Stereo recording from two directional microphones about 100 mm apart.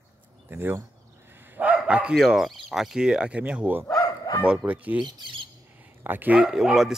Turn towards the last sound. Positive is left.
turn(degrees=-5)  # may be behind; listen again after turning